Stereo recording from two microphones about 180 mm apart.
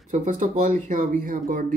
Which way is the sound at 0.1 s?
45° right (ahead or behind).